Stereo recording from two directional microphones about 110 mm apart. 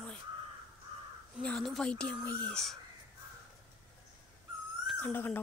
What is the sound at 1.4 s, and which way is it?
A woman's voice, 5° left (ahead or behind).